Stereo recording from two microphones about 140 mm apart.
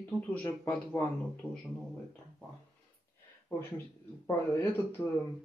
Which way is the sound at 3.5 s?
20° left (ahead or behind).